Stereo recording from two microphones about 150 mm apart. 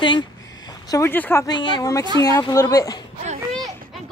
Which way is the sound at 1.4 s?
30° left (ahead or behind).